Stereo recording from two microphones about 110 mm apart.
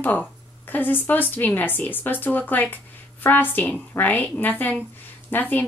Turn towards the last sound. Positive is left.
turn(degrees=15)  # may be behind; listen again after turning